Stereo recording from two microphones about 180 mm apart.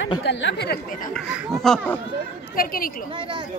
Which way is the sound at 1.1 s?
5° left (ahead or behind).